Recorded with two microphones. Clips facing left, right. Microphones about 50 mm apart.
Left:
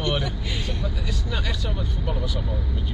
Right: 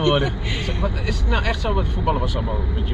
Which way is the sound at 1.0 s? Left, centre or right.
Right.